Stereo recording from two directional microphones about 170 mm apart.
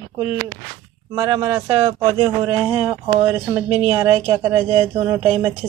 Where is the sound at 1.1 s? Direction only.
20° right (ahead or behind).